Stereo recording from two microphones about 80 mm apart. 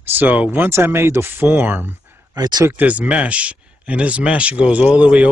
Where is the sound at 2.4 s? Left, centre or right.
Right.